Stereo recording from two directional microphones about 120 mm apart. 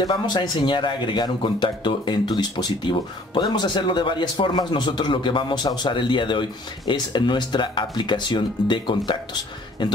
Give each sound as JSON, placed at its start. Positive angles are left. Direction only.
{"t": 0.0, "sound": "speech", "side_deg": 35}